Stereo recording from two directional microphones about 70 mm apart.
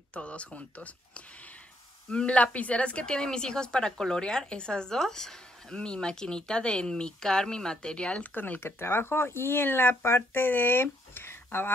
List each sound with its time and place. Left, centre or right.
0.1 s a woman's voice: centre
8.4 s speech: left